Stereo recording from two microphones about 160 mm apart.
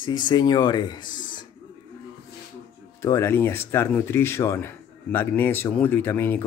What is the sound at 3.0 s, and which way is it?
Speech, 15° left (ahead or behind).